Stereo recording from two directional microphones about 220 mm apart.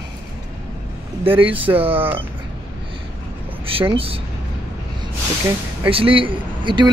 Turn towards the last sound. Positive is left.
turn(degrees=-20)  # may be behind; listen again after turning